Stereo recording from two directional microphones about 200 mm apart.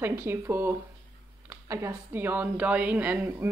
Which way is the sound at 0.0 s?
10° right (ahead or behind).